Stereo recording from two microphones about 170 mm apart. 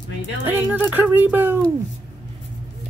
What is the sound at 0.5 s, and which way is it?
Speech, 10° right (ahead or behind).